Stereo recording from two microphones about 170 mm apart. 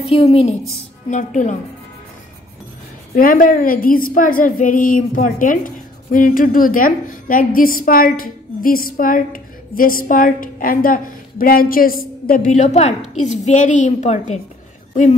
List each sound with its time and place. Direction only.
0.1 s a woman's voice: 35° left (ahead or behind)
3.2 s a woman's voice: 55° left (ahead or behind)
12.4 s a woman's voice: 40° left (ahead or behind)